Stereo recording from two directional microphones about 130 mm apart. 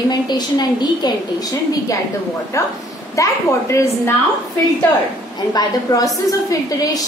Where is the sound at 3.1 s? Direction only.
25° left (ahead or behind).